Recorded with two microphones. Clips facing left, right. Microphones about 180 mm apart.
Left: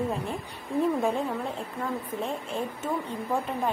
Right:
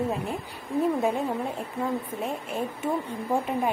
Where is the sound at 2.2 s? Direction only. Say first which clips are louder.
Right 1 dB; 10° right (ahead or behind).